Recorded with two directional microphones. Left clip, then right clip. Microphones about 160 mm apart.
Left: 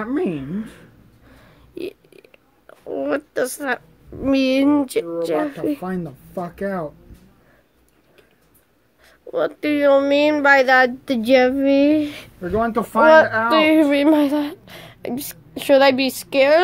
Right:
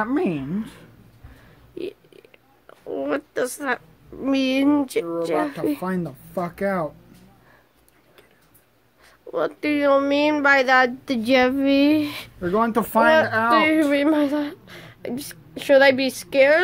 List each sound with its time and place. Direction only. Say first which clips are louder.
0.0 s speech: even; 65° right (ahead or behind)
1.8 s a sound: left 2 dB; 15° left (ahead or behind)
5.4 s speech: left 1 dB; centre (ahead or behind)
5.8 s speech: right 1 dB; 60° right (ahead or behind)
9.0 s speech: left 3 dB; 5° left (ahead or behind)
12.4 s speech: even; 55° right (ahead or behind)
13.5 s a woman's voice: left 3 dB; 10° left (ahead or behind)